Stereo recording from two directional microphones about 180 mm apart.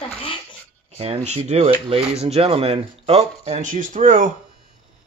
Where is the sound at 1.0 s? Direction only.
35° right (ahead or behind).